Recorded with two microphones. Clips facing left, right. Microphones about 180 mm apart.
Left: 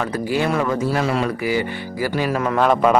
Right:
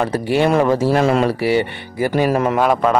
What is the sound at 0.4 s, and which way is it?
Speech, 30° right (ahead or behind).